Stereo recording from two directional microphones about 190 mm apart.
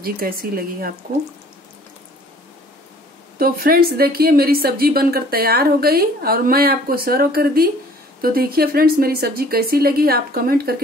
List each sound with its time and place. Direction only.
0.0 s speech: 50° right (ahead or behind)
3.3 s speech: 50° right (ahead or behind)